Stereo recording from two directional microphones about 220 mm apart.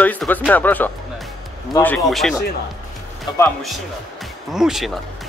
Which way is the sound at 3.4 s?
Centre (ahead or behind).